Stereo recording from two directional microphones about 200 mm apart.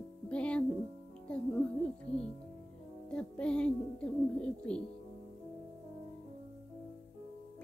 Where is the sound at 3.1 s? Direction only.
5° left (ahead or behind).